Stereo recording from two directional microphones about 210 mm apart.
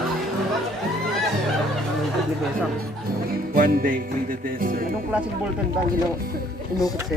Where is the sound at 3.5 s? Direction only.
45° right (ahead or behind).